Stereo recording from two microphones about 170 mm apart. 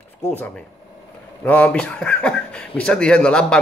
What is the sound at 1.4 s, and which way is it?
A man's voice, 10° left (ahead or behind).